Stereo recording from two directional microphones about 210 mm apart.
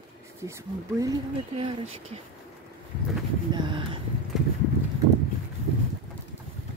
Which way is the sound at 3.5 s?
25° right (ahead or behind).